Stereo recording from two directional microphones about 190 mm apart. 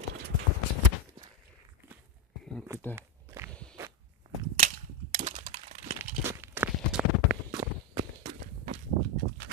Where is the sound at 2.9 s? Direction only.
15° right (ahead or behind).